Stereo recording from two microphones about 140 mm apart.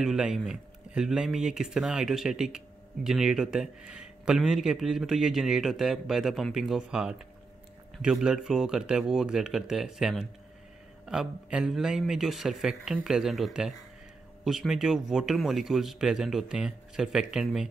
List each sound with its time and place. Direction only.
0.0 s speech: 5° right (ahead or behind)